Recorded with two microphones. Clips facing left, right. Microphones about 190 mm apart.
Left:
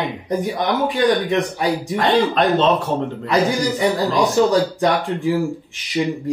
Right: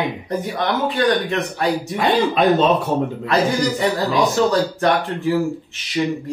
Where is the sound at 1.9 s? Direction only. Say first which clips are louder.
Left 2 dB; 5° right (ahead or behind).